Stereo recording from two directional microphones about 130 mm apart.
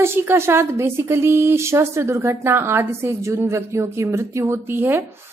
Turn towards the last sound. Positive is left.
turn(degrees=-15)  # may be behind; listen again after turning